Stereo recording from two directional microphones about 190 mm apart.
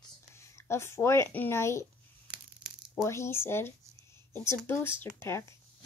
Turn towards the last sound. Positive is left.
turn(degrees=15)  # may be behind; listen again after turning